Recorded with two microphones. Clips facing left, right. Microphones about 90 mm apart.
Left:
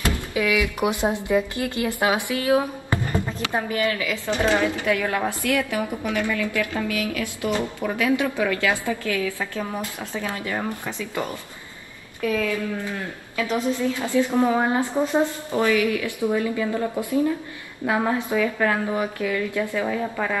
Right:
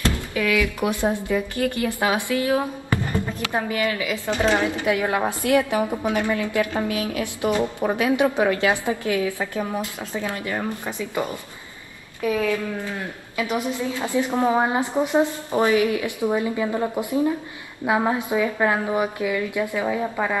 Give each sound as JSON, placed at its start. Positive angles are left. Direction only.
{"t": 0.0, "sound": "speech", "side_deg": 15}
{"t": 3.8, "sound": "a woman's voice", "side_deg": -20}